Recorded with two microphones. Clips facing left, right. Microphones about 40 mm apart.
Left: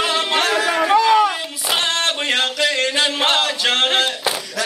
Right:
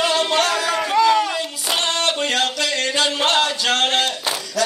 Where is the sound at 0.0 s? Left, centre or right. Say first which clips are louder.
Even; centre.